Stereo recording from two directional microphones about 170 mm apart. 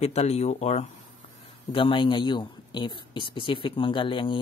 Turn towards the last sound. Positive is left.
turn(degrees=30)  # may be behind; listen again after turning